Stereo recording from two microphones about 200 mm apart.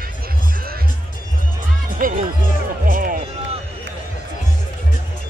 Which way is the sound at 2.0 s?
45° right (ahead or behind).